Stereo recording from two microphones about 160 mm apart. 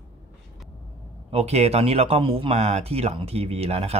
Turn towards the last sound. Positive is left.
turn(degrees=-40)  # may be behind; listen again after turning